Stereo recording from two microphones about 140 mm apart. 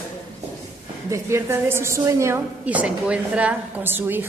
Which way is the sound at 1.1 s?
20° right (ahead or behind).